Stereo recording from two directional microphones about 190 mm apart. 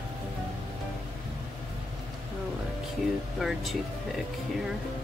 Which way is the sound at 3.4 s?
Centre (ahead or behind).